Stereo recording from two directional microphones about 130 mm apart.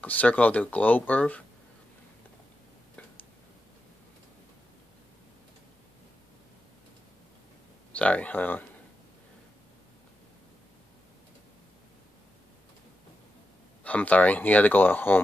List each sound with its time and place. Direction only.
0.0 s speech: 10° left (ahead or behind)
7.9 s speech: 10° left (ahead or behind)
13.8 s speech: 10° left (ahead or behind)